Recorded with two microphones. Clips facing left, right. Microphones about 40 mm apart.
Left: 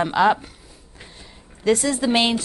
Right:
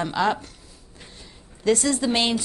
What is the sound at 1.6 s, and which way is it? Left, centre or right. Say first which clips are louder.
Speech: left 2 dB; centre.